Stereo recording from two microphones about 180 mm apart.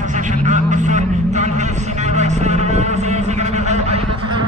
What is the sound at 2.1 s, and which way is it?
Vehicle, 40° right (ahead or behind).